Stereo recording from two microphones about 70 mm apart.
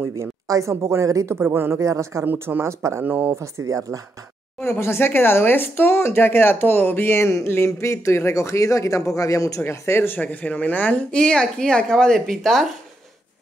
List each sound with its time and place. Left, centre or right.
0.1 s speech: right
1.3 s speech: right
1.8 s speech: right
2.2 s speech: right
3.0 s speech: right
3.3 s speech: right
4.6 s speech: left
9.6 s a woman's voice: left; by 12.6 s centre